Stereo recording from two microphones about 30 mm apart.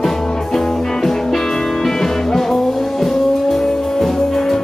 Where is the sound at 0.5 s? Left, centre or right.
Centre.